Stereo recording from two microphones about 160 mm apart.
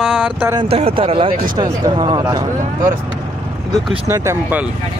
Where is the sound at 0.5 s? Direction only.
40° right (ahead or behind); by 2.9 s 20° right (ahead or behind).